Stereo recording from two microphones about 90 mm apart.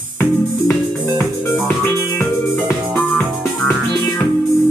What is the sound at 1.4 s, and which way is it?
Music, 15° left (ahead or behind).